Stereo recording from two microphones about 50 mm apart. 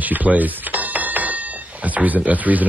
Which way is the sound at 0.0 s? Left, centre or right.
Right.